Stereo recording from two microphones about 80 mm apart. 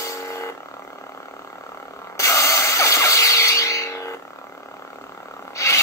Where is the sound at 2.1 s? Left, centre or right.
Left.